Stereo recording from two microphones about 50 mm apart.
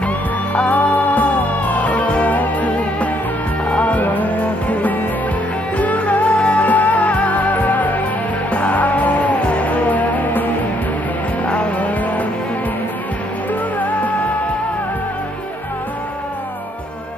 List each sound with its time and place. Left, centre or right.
0.6 s music: left
13.7 s music: left